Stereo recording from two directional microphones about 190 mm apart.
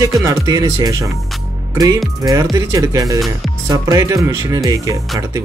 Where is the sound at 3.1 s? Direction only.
Centre (ahead or behind).